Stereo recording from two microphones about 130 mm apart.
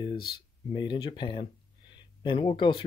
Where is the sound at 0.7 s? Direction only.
40° left (ahead or behind).